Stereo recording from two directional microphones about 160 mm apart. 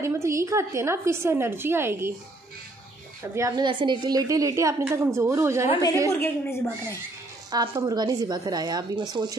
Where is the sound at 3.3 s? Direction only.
25° right (ahead or behind).